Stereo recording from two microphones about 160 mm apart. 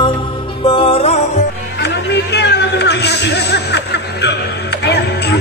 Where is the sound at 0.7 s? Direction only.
30° left (ahead or behind).